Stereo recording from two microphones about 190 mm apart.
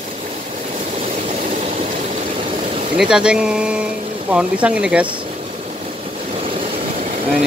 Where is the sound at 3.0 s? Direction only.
5° right (ahead or behind).